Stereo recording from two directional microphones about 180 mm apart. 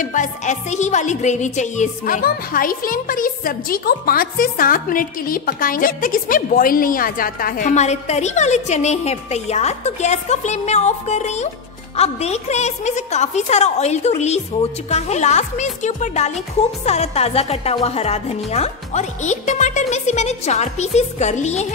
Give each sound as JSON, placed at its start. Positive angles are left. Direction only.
{"t": 0.0, "sound": "a woman's voice", "side_deg": 45}